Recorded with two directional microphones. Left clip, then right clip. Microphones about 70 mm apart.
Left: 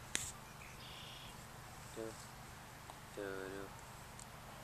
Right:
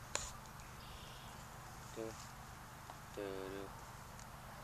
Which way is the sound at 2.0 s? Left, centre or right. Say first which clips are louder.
Even; right.